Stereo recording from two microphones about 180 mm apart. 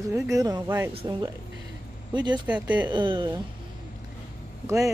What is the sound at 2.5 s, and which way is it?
Speech, 10° right (ahead or behind).